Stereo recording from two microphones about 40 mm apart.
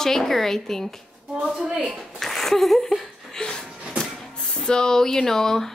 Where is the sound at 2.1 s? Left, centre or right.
Centre.